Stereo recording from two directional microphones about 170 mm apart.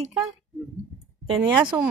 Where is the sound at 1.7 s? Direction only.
20° right (ahead or behind).